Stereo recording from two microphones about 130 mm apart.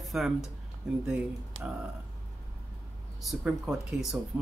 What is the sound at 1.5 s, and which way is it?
Speech, 45° right (ahead or behind).